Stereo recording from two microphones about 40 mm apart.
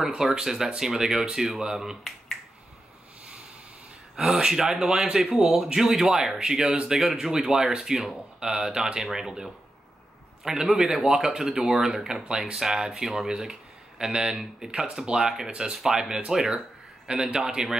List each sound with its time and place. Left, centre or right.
0.2 s speech: centre
4.2 s speech: centre